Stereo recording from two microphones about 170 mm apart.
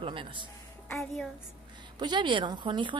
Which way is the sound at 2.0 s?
30° right (ahead or behind).